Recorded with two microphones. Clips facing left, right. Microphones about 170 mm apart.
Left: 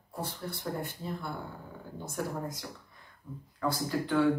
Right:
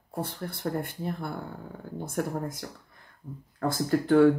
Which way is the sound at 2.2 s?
60° right (ahead or behind).